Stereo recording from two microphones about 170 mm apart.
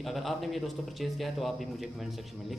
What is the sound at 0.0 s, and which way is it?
Speech, centre (ahead or behind).